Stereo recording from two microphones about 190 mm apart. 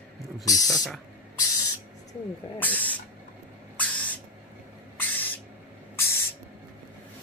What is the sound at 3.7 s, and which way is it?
Owl, 5° left (ahead or behind).